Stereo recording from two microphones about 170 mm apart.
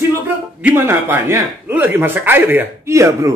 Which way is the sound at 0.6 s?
10° right (ahead or behind).